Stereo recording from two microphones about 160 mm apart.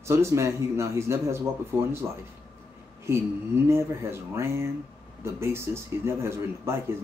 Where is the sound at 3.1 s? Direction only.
15° right (ahead or behind).